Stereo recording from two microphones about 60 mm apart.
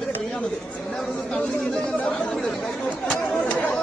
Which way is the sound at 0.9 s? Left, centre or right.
Centre.